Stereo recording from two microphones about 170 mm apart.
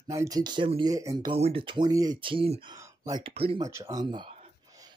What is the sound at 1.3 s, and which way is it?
Speech, 35° right (ahead or behind).